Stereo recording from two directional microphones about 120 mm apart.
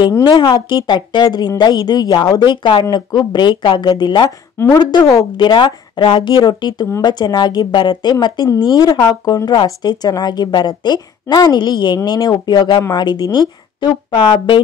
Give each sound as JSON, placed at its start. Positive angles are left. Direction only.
{"t": 0.2, "sound": "speech", "side_deg": 40}